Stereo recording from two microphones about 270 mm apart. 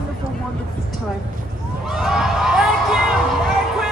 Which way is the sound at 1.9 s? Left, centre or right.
Centre.